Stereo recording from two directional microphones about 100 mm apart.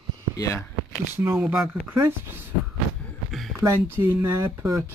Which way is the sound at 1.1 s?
25° right (ahead or behind).